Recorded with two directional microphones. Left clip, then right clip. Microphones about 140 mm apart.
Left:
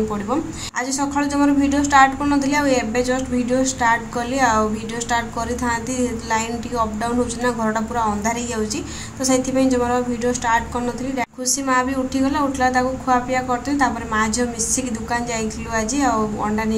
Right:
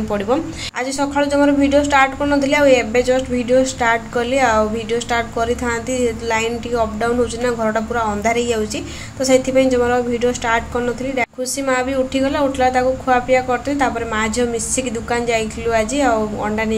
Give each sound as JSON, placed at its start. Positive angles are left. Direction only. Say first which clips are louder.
{"t": 0.9, "sound": "a woman's voice", "louder": "right 5 dB", "side_deg": -25}
{"t": 6.3, "sound": "a woman's voice", "louder": "right 3 dB", "side_deg": -20}